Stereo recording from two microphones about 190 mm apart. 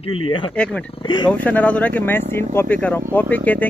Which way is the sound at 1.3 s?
5° left (ahead or behind).